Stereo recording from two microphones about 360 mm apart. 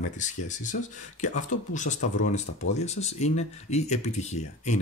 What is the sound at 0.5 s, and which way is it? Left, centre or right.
Speech, left.